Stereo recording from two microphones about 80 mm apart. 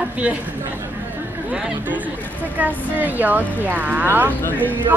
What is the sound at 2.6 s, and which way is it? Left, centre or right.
A woman's voice, right.